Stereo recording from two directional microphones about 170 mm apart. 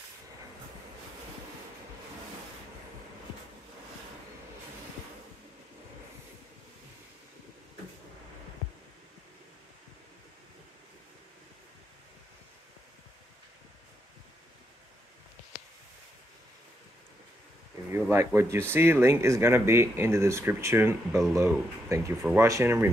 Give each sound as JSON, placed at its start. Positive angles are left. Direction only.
{"t": 18.1, "sound": "speech", "side_deg": -15}